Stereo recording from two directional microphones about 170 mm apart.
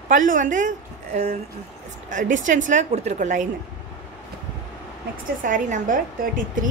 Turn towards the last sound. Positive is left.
turn(degrees=-50)  # may be behind; listen again after turning